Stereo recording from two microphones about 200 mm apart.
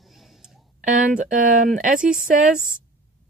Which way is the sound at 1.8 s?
40° right (ahead or behind).